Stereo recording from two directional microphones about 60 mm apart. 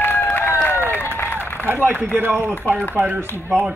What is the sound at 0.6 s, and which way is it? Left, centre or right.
Run, left.